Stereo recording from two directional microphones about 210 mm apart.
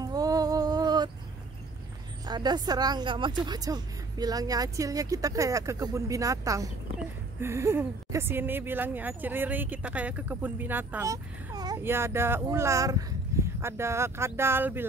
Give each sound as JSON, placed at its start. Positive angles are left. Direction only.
{"t": 0.0, "sound": "music", "side_deg": -15}
{"t": 2.2, "sound": "a woman's voice", "side_deg": -20}